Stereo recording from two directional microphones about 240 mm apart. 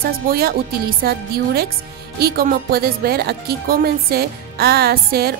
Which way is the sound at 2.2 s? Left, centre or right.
Right.